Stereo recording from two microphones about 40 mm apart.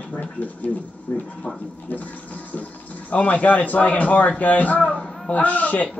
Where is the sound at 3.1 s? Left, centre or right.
Left.